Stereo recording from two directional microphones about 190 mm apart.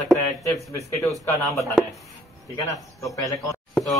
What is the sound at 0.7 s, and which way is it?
Speech, 15° left (ahead or behind).